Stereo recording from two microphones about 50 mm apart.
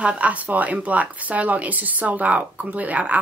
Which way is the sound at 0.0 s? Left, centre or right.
Right.